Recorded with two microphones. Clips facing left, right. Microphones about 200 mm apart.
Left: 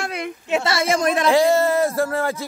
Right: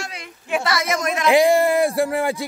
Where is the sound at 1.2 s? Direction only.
15° right (ahead or behind).